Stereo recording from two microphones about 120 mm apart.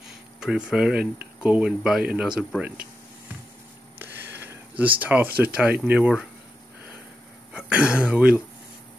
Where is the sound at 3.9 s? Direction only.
15° right (ahead or behind).